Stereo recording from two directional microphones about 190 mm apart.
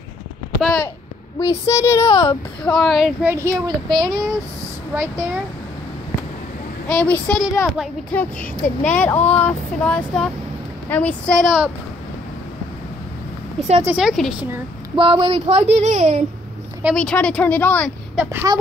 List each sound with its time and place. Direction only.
0.6 s speech: centre (ahead or behind)
1.4 s speech: 15° left (ahead or behind)
2.6 s a child's voice: centre (ahead or behind); by 5.3 s 15° right (ahead or behind)
6.9 s child singing: 5° left (ahead or behind)
8.2 s speech: 10° left (ahead or behind)
9.3 s child singing: 5° left (ahead or behind)
10.9 s speech: 10° left (ahead or behind)
13.8 s child singing: 5° right (ahead or behind)
15.0 s speech: 25° right (ahead or behind)
16.9 s speech: 5° left (ahead or behind)
18.1 s speech: 10° right (ahead or behind)